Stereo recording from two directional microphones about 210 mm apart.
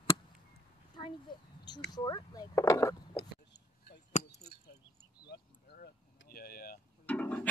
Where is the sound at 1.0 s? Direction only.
25° left (ahead or behind).